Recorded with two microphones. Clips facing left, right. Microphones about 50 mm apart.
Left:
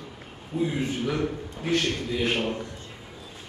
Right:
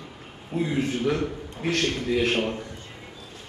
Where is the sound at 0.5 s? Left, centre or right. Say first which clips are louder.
Right 1 dB; right.